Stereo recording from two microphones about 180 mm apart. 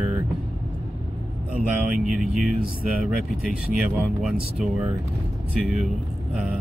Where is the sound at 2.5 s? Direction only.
55° right (ahead or behind).